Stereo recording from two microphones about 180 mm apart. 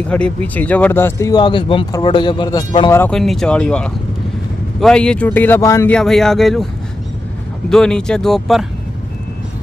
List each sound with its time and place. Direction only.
0.1 s speech: 5° left (ahead or behind); by 2.9 s 25° left (ahead or behind)
2.9 s speech: 10° left (ahead or behind)
3.2 s speech: centre (ahead or behind)
5.9 s speech: centre (ahead or behind)
7.7 s speech: 5° left (ahead or behind)